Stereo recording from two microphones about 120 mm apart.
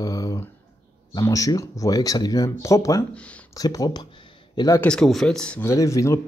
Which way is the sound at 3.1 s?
10° left (ahead or behind).